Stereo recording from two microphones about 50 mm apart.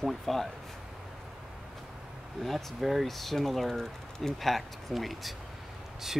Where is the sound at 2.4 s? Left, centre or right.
Centre.